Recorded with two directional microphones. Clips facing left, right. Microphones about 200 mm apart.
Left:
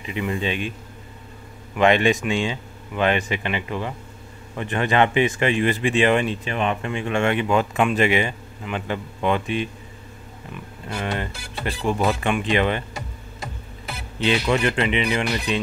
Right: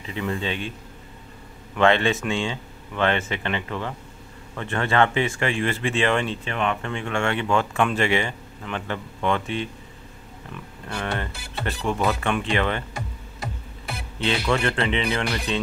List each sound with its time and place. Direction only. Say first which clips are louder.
0.0 s speech: left 2 dB; 15° left (ahead or behind)
1.8 s speech: left 2 dB; 15° left (ahead or behind)
14.2 s speech: left 3 dB; 15° left (ahead or behind)